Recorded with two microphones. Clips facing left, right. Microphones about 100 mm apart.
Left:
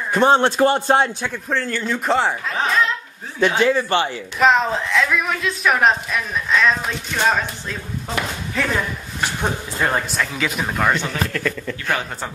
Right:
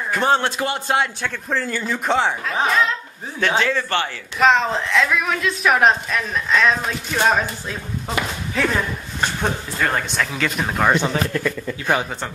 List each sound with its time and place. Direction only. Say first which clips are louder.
0.1 s a man's voice: left 4 dB; 25° left (ahead or behind)
0.5 s a man's voice: left 6 dB; 35° left (ahead or behind)
1.5 s a woman's voice: left 1 dB; 5° right (ahead or behind)
3.3 s speech: left 3 dB; 15° left (ahead or behind)
4.4 s a woman's voice: even; centre (ahead or behind)
9.8 s a man's voice: left 1 dB; 20° left (ahead or behind)
10.0 s a woman's voice: even; centre (ahead or behind)
10.9 s a man's voice: right 2 dB; 20° right (ahead or behind)